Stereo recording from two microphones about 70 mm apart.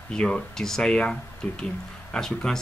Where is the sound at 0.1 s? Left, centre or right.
Centre.